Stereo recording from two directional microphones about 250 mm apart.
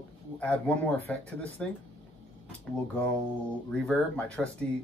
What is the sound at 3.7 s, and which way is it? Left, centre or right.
Speech, centre.